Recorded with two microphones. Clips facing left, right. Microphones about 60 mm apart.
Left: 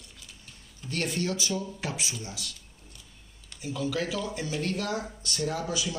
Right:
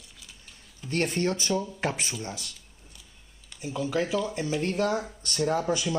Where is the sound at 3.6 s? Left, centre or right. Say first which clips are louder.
Right 2 dB; right.